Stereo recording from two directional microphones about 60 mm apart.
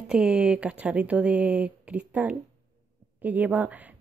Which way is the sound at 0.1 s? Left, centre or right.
Centre.